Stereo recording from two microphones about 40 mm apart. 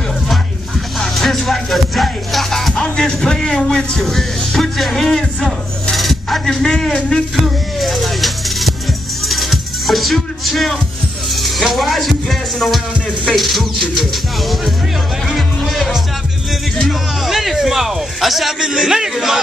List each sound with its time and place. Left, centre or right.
0.9 s music: centre
2.7 s music: centre
3.4 s a sound: centre
4.0 s music: centre
5.9 s a sound: centre
6.4 s a sound: centre
7.4 s music: centre
11.2 s speech: centre
13.3 s music: centre
17.2 s a man's voice: centre